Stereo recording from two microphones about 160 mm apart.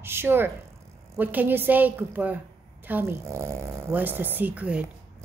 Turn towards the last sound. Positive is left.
turn(degrees=-10)  # may be behind; listen again after turning